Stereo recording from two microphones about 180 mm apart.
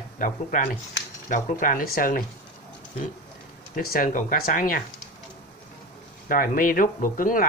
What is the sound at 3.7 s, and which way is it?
Speech, 50° left (ahead or behind).